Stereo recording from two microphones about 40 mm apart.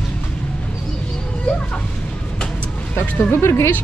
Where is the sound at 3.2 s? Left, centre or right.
Left.